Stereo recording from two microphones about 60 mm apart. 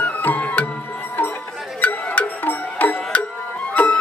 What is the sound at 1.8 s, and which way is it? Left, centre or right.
Music, left.